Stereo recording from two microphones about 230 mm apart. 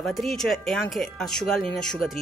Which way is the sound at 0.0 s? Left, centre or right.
Centre.